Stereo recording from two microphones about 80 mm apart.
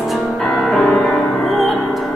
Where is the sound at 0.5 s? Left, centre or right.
Centre.